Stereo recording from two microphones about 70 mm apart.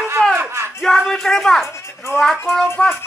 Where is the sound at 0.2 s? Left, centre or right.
Centre.